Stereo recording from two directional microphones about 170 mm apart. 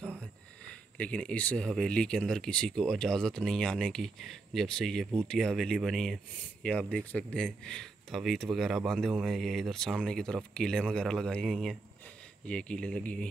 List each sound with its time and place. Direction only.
0.9 s speech: 5° left (ahead or behind)